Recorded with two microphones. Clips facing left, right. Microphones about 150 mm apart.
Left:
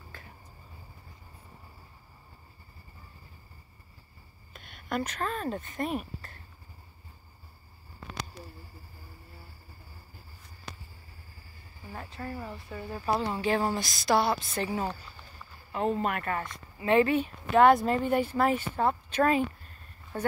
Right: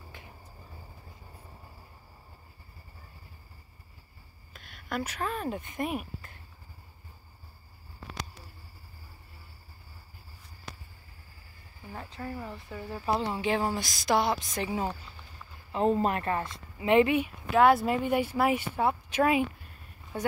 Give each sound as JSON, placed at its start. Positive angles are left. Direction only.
{"t": 4.6, "sound": "speech", "side_deg": 0}
{"t": 11.9, "sound": "a sound", "side_deg": -20}
{"t": 13.0, "sound": "a woman's voice", "side_deg": -20}
{"t": 15.7, "sound": "speech", "side_deg": -30}
{"t": 17.5, "sound": "speech", "side_deg": -5}